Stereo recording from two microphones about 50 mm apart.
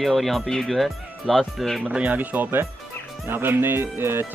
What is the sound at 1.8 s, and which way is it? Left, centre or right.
Speech, right.